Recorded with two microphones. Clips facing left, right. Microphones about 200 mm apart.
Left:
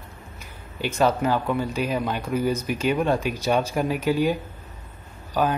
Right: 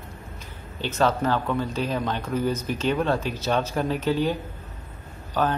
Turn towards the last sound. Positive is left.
turn(degrees=10)  # may be behind; listen again after turning